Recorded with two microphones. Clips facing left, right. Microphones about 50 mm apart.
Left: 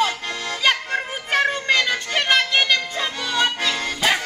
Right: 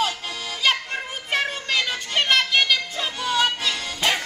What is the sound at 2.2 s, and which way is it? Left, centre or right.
Music, centre.